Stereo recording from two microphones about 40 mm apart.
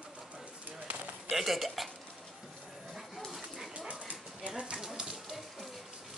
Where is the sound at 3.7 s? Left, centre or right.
Right.